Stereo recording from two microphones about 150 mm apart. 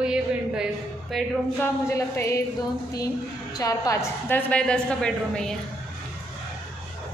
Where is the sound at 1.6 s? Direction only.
20° left (ahead or behind).